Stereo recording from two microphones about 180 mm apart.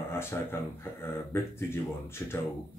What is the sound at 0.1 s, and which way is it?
Speech, 15° left (ahead or behind).